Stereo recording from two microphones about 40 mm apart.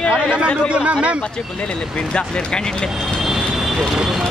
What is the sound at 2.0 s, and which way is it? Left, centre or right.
Speech, left.